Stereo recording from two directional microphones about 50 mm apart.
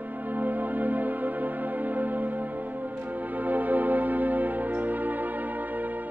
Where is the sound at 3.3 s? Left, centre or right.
Right.